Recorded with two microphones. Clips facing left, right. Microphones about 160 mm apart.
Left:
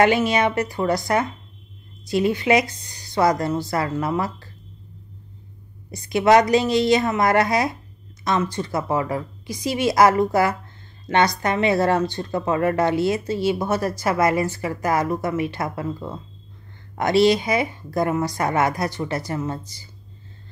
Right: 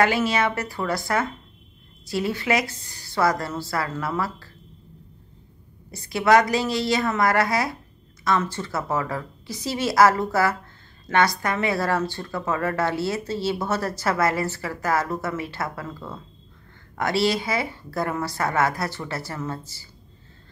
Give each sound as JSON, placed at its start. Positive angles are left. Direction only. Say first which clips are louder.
{"t": 0.0, "sound": "a woman's voice", "louder": "left 3 dB", "side_deg": 20}
{"t": 5.9, "sound": "a woman's voice", "louder": "left 3 dB", "side_deg": 20}